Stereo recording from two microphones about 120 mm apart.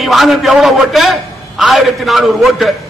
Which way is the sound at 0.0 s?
Centre (ahead or behind).